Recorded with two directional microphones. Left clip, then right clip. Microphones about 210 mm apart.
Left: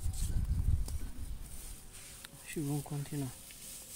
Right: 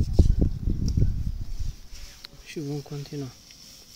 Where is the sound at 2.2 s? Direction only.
15° right (ahead or behind).